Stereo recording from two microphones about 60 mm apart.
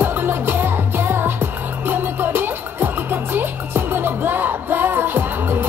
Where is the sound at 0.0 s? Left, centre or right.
Right.